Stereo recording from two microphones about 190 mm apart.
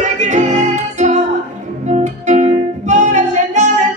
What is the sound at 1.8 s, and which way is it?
Music, 40° right (ahead or behind).